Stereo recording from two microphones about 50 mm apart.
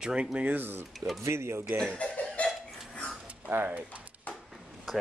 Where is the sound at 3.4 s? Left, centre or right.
Right.